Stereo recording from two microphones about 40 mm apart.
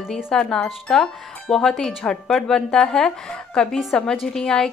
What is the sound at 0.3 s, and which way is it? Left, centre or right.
A woman's voice, centre.